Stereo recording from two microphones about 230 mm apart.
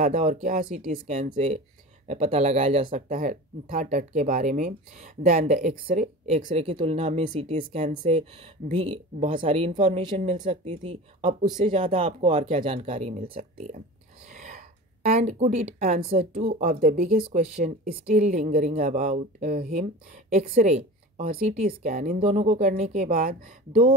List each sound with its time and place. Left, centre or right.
0.0 s a woman's voice: right
14.3 s a sound: right
15.0 s a woman's voice: right